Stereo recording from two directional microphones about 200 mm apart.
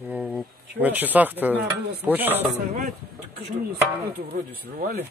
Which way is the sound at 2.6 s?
45° right (ahead or behind).